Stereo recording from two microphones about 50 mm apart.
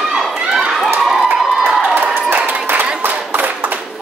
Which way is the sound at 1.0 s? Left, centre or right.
Centre.